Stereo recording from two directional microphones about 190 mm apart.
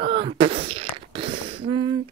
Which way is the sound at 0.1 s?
30° right (ahead or behind).